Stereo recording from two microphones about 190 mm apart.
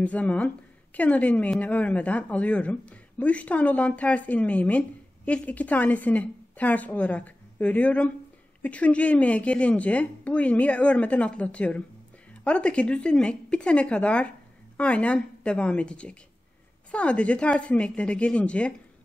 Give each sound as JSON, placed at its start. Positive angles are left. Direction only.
{"t": 0.0, "sound": "a woman's voice", "side_deg": 5}